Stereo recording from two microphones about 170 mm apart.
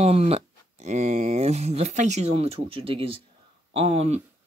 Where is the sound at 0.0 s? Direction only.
35° right (ahead or behind).